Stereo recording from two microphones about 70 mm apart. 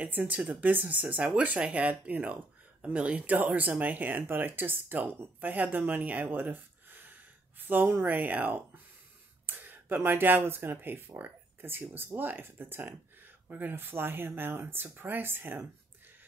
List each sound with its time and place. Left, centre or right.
0.0 s speech: right